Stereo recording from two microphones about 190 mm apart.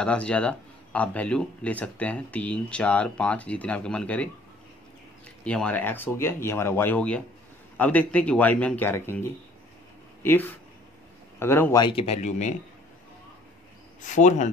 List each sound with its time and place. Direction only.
0.0 s speech: 5° left (ahead or behind)
5.4 s a man's voice: 5° left (ahead or behind)
11.8 s speech: 30° left (ahead or behind)
14.0 s speech: 40° left (ahead or behind)